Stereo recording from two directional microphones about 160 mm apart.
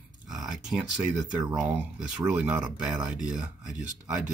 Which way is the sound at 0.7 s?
5° right (ahead or behind).